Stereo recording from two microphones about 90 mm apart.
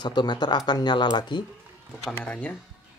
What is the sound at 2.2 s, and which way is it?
Speech, 15° left (ahead or behind).